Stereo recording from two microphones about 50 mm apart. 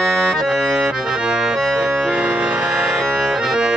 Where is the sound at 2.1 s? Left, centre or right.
Right.